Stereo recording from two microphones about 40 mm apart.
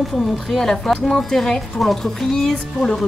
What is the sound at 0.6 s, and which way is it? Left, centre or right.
Speech, centre.